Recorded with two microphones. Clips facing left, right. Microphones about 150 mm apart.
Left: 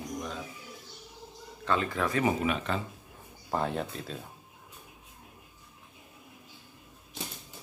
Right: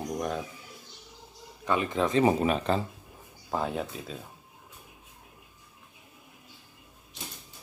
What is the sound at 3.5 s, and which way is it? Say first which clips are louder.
Speech: even; 5° right (ahead or behind).